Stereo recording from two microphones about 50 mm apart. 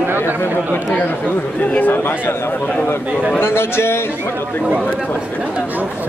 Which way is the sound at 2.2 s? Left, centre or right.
Left.